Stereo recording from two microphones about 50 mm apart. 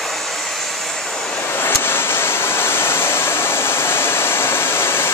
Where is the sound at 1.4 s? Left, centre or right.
Left.